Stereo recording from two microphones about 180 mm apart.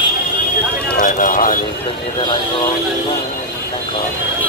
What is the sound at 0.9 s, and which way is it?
Speech, 50° left (ahead or behind).